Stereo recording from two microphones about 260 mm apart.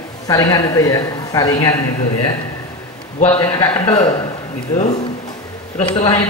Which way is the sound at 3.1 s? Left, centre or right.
Left.